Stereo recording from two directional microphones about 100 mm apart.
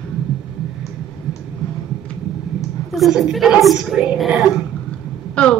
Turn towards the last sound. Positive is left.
turn(degrees=10)  # may be behind; listen again after turning